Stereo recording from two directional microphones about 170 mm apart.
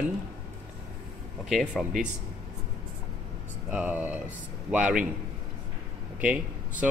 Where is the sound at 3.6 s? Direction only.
10° right (ahead or behind).